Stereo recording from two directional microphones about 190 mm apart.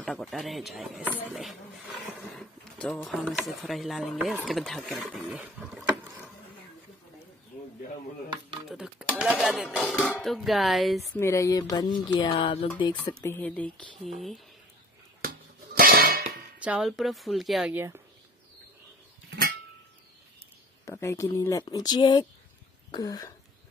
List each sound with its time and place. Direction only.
0.0 s speech: centre (ahead or behind)
8.3 s a sound: 25° right (ahead or behind)
8.6 s speech: 5° right (ahead or behind)
11.1 s speech: 15° left (ahead or behind)
12.9 s speech: 10° left (ahead or behind)
15.2 s a sound: 50° right (ahead or behind)
16.5 s speech: 5° right (ahead or behind)
20.8 s speech: 15° left (ahead or behind)